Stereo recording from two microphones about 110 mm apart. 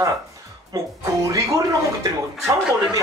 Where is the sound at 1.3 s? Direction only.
30° right (ahead or behind).